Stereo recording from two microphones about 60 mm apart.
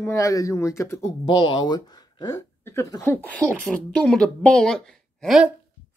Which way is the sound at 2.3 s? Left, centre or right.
Left.